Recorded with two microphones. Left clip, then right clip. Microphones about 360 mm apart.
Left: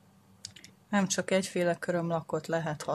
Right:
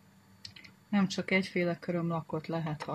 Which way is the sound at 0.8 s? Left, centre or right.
Left.